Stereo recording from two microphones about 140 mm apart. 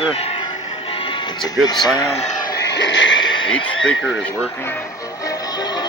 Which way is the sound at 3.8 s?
5° left (ahead or behind).